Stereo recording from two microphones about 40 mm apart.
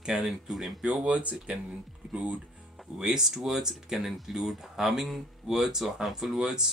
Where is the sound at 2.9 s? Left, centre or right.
Centre.